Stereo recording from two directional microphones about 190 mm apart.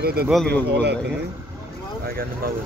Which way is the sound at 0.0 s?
55° right (ahead or behind).